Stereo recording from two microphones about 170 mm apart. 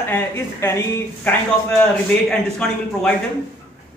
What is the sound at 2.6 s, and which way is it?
Speech, 5° left (ahead or behind).